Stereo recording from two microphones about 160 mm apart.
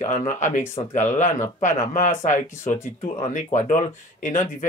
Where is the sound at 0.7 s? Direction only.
40° left (ahead or behind).